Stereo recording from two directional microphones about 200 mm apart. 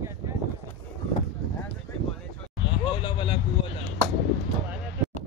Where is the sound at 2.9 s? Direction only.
25° left (ahead or behind).